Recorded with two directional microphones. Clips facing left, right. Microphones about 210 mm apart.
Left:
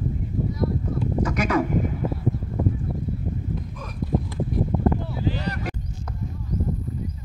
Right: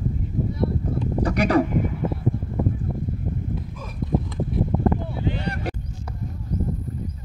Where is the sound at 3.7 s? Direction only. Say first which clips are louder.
Right 1 dB; 5° right (ahead or behind).